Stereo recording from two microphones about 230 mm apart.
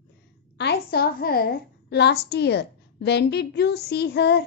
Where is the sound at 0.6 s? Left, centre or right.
Left.